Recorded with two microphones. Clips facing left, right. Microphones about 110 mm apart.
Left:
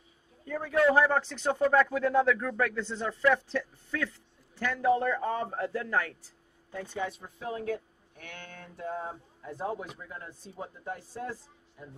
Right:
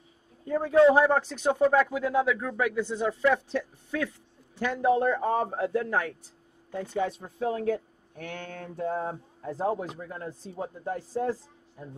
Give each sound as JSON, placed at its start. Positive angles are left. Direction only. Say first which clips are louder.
{"t": 0.5, "sound": "a man's voice", "louder": "right 6 dB", "side_deg": -30}
{"t": 6.7, "sound": "speech", "louder": "right 5 dB", "side_deg": -30}
{"t": 9.9, "sound": "speech", "louder": "right 7 dB", "side_deg": -45}
{"t": 10.5, "sound": "speech", "louder": "right 5 dB", "side_deg": -35}